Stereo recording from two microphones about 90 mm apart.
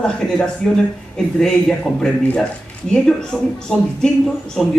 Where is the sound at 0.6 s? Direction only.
10° left (ahead or behind).